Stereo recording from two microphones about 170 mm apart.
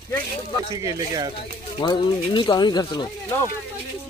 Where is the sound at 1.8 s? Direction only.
25° left (ahead or behind).